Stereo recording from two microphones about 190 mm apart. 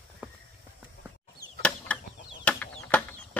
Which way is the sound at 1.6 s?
5° left (ahead or behind).